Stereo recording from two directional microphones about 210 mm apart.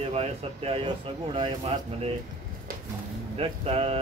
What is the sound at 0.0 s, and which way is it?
Speech, 30° right (ahead or behind).